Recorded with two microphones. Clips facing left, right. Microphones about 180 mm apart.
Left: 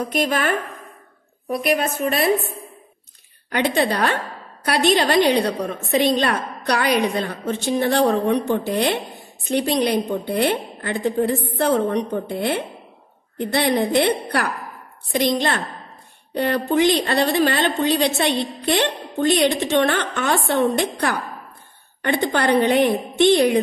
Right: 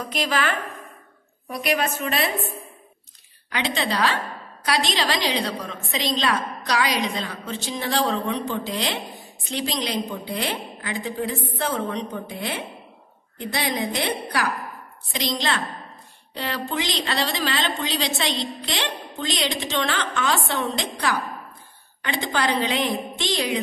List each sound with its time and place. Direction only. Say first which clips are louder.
0.1 s a woman's voice: left 3 dB; 50° left (ahead or behind)
1.5 s a woman's voice: left 4 dB; 55° left (ahead or behind)
3.5 s a woman's voice: left 5 dB; 55° left (ahead or behind)